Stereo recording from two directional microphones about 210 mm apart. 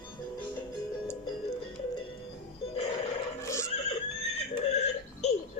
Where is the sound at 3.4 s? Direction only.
15° left (ahead or behind).